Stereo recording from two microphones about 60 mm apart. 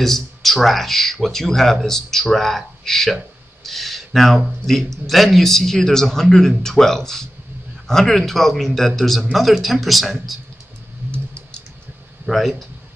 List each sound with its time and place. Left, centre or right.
0.0 s speech: centre
3.6 s a sound: centre
4.6 s speech: centre
11.1 s typing: centre
12.3 s speech: centre